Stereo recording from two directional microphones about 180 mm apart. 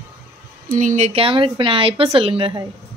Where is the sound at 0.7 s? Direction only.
45° right (ahead or behind).